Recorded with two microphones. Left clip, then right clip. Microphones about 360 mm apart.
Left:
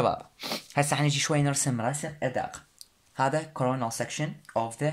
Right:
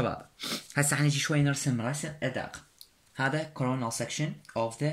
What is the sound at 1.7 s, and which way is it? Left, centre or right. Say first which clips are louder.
Speech: left 3 dB; left.